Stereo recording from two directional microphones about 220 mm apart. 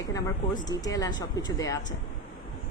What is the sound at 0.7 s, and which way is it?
Speech, 15° left (ahead or behind).